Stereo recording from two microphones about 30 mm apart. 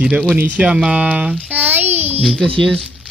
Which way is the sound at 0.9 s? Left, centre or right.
Right.